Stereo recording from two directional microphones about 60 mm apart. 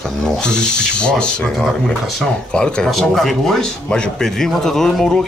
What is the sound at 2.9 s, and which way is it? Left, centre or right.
A man's voice, centre.